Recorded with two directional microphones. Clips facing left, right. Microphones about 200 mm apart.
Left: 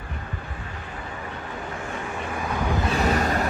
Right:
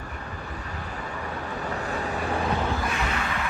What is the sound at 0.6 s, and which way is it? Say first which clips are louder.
Vehicle: right 1 dB; 40° right (ahead or behind).